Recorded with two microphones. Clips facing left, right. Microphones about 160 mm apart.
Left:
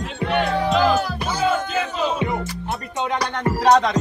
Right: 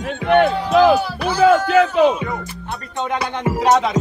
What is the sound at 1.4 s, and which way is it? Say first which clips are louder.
Speech: right 10 dB; 70° right (ahead or behind).